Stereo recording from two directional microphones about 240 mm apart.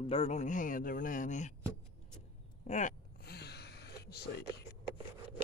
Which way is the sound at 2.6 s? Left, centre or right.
Left.